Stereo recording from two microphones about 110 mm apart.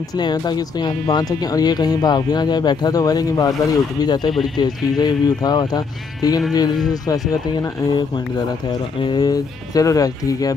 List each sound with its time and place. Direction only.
0.1 s speech: 40° left (ahead or behind)
9.0 s speech: 40° left (ahead or behind)